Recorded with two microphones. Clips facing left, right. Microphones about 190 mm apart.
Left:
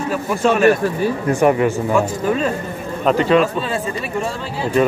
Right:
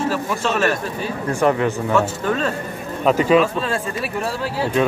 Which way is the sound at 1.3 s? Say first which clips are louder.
Left 2 dB; 10° left (ahead or behind).